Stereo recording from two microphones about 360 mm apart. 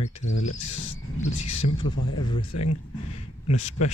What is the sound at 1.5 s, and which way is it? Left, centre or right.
Cricket, left.